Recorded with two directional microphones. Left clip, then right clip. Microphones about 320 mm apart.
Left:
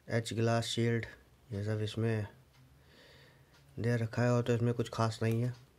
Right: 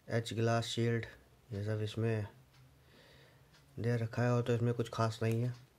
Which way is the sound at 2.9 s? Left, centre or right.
Centre.